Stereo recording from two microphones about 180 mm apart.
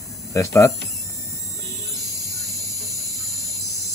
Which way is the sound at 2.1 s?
20° left (ahead or behind).